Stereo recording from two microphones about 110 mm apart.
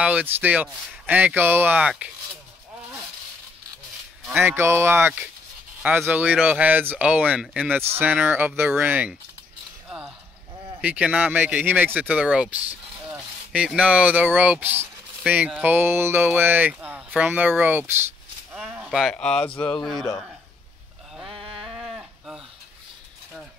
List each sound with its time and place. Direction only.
0.0 s speech: 15° right (ahead or behind)
4.4 s speech: 20° right (ahead or behind); by 7.7 s 5° right (ahead or behind)
7.9 s speech: 15° right (ahead or behind)
9.8 s a sound: 5° right (ahead or behind)
10.8 s speech: 10° right (ahead or behind)
18.5 s a sound: 5° right (ahead or behind)
19.1 s speech: 10° left (ahead or behind)
21.3 s sheep: 60° right (ahead or behind)
21.7 s sheep: 10° right (ahead or behind)